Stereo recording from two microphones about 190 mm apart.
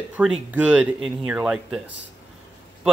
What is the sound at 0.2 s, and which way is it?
A man's voice, 5° right (ahead or behind).